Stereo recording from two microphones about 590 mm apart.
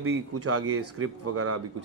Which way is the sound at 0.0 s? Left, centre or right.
Right.